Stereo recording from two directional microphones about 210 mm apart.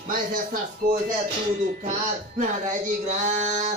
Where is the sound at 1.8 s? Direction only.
40° right (ahead or behind).